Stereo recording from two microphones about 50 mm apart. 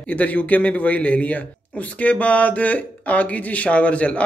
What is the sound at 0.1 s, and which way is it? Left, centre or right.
A man's voice, left.